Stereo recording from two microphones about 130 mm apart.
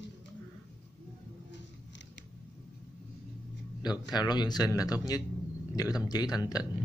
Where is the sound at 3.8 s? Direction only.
30° left (ahead or behind).